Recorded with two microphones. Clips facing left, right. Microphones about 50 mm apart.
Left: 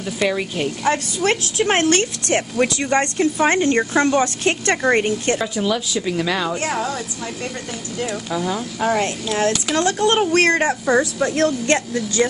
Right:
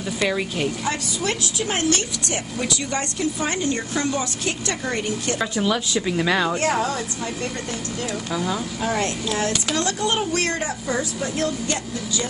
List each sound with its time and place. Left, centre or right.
0.2 s a woman's voice: centre
0.8 s speech: left
5.4 s a woman's voice: centre
8.3 s a woman's voice: centre
8.7 s speech: left
9.9 s speech: left
10.3 s speech: left